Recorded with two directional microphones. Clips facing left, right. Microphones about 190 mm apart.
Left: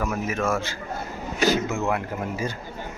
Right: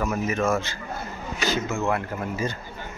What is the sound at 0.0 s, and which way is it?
Speech, 5° left (ahead or behind).